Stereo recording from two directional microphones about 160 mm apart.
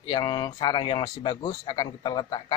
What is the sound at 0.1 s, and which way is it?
A man's voice, 30° left (ahead or behind).